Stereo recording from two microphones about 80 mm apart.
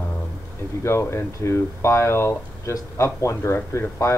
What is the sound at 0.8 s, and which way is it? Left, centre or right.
Speech, left.